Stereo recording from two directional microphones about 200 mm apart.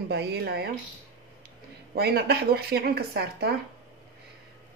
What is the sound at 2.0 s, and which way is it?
Speech, 55° right (ahead or behind).